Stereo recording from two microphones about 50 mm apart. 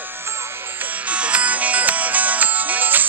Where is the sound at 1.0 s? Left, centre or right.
Right.